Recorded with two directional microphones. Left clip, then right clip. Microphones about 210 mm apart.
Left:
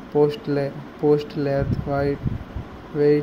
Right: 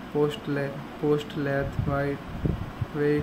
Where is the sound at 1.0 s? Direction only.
Centre (ahead or behind).